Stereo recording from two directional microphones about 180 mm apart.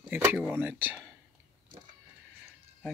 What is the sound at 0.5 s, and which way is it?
Speech, 10° right (ahead or behind).